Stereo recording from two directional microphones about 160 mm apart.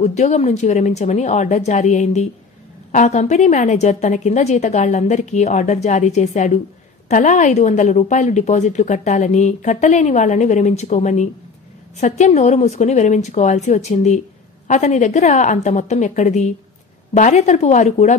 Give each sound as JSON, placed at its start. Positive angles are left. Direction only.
{"t": 0.0, "sound": "a woman's voice", "side_deg": 45}